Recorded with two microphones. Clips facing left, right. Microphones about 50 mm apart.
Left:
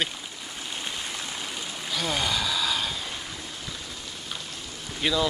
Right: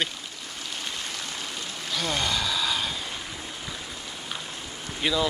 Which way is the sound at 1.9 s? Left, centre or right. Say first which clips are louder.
Even; centre.